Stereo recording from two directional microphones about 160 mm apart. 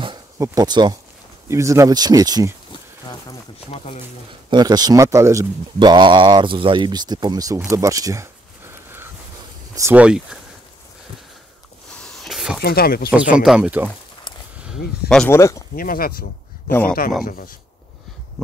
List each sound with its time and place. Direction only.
0.0 s a sound: 25° right (ahead or behind)
1.5 s speech: 20° right (ahead or behind)
2.7 s a sound: 25° left (ahead or behind)
3.7 s speech: 40° left (ahead or behind)
4.5 s speech: 25° right (ahead or behind)
7.7 s a sound: 20° right (ahead or behind)
9.8 s speech: 10° right (ahead or behind)
12.0 s a sound: centre (ahead or behind)
12.6 s speech: 70° left (ahead or behind)
13.1 s speech: 5° right (ahead or behind)
14.7 s speech: 5° left (ahead or behind)
15.2 s speech: 15° left (ahead or behind)
15.7 s speech: 65° left (ahead or behind)